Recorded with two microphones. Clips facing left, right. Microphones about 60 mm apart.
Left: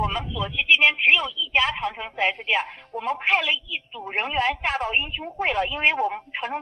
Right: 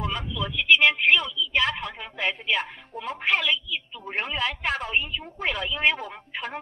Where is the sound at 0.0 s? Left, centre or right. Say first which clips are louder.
Left 4 dB; left.